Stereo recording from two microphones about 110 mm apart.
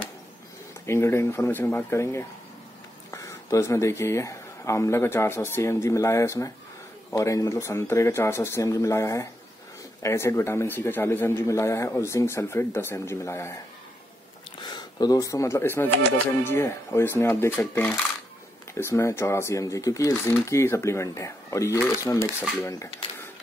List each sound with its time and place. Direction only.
0.8 s a man's voice: 25° left (ahead or behind)
14.6 s a man's voice: 40° left (ahead or behind)